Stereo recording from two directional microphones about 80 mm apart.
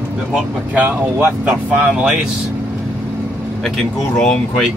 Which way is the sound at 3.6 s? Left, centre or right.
Centre.